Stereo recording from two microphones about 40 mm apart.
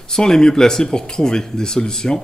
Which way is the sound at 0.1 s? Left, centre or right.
Centre.